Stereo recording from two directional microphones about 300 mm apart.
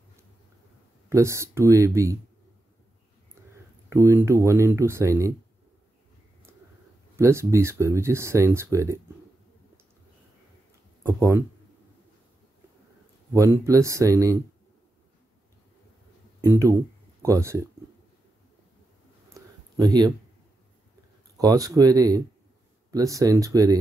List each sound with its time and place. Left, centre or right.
1.1 s speech: centre
3.9 s speech: centre
7.2 s speech: centre
11.1 s speech: centre
13.3 s speech: centre
16.3 s speech: centre
19.2 s a sound: centre
21.4 s speech: centre